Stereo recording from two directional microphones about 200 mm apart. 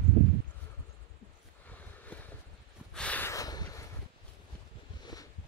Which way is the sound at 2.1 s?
5° left (ahead or behind).